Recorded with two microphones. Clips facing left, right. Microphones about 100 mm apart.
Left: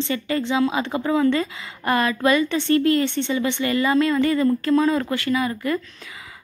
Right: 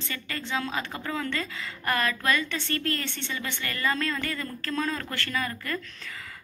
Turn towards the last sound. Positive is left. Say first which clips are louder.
# left 9 dB
turn(degrees=15)  # may be behind; listen again after turning